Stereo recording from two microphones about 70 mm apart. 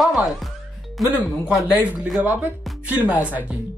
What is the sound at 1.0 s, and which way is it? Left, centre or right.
Speech, centre.